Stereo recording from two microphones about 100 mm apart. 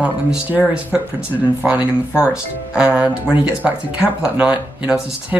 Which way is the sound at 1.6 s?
15° right (ahead or behind).